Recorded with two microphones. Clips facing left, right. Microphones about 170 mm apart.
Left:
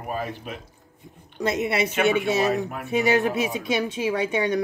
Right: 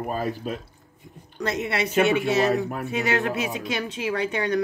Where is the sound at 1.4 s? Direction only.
20° left (ahead or behind).